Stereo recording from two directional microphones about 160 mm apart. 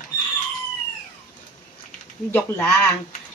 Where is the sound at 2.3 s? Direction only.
10° left (ahead or behind).